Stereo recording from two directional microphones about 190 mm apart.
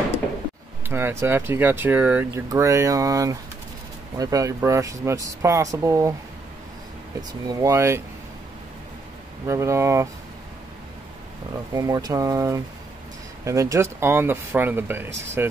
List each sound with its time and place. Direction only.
0.8 s speech: 10° right (ahead or behind)
7.2 s speech: 20° right (ahead or behind)
9.5 s speech: 15° right (ahead or behind)
11.7 s speech: 20° right (ahead or behind)